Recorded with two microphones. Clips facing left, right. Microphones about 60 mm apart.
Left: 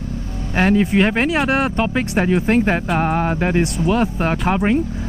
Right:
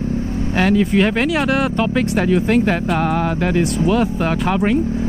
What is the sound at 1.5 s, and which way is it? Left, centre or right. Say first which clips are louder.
Speech: right 1 dB; left.